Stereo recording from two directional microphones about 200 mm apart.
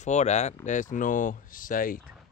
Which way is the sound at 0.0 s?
35° left (ahead or behind).